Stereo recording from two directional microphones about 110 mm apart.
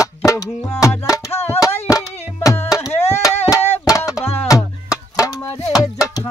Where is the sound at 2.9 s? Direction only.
75° left (ahead or behind).